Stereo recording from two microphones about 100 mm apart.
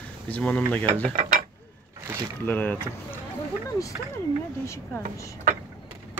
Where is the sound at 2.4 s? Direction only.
20° left (ahead or behind).